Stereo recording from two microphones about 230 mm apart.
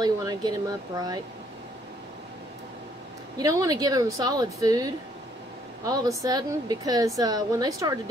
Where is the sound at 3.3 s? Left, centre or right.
Centre.